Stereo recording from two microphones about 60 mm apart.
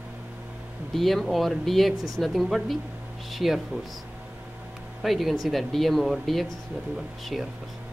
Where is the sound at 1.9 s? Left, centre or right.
Right.